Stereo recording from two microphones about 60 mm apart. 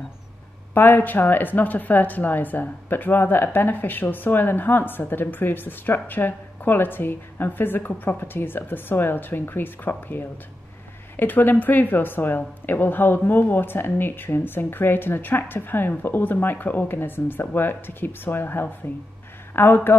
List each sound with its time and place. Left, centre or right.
0.7 s a woman's voice: left